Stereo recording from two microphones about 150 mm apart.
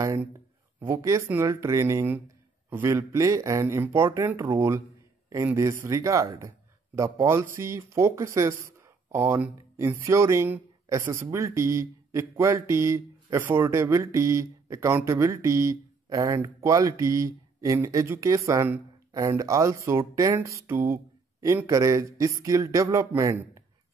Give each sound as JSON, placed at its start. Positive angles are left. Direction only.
{"t": 0.7, "sound": "speech", "side_deg": -20}